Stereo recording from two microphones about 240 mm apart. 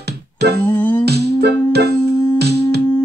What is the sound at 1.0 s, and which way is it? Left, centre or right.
Music, right.